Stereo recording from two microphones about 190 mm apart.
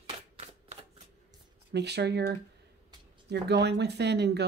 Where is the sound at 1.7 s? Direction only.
60° right (ahead or behind).